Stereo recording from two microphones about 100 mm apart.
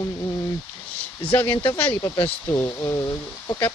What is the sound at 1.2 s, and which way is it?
Speech, 20° left (ahead or behind).